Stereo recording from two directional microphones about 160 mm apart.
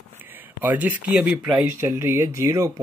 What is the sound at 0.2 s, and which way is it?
Speech, 10° right (ahead or behind).